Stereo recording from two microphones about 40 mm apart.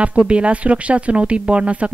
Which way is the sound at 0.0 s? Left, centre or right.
Right.